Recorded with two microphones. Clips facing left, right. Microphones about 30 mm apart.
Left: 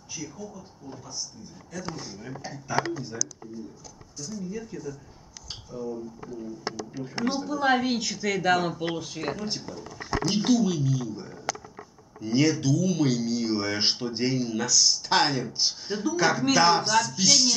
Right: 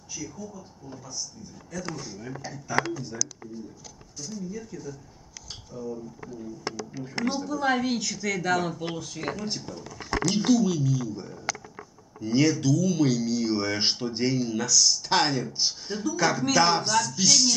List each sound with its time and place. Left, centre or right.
0.1 s speech: centre
1.9 s speech: centre
4.4 s speech: centre